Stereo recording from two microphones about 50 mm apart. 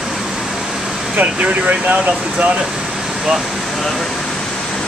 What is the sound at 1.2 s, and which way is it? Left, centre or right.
Speech, right.